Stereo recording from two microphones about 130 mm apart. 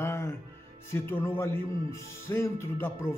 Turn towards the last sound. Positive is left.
turn(degrees=20)  # may be behind; listen again after turning